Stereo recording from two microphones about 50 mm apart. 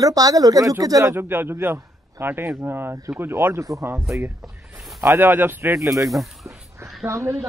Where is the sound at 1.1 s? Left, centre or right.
Right.